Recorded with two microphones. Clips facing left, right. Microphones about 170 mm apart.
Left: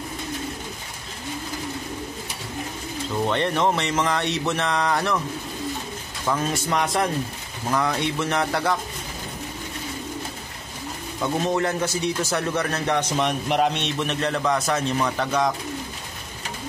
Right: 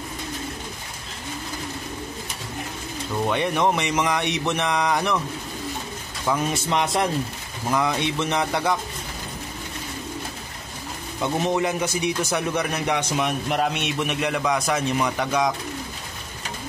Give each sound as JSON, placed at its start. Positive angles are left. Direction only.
{"t": 3.3, "sound": "a man's voice", "side_deg": -10}
{"t": 6.5, "sound": "a man's voice", "side_deg": -25}
{"t": 11.1, "sound": "a man's voice", "side_deg": -15}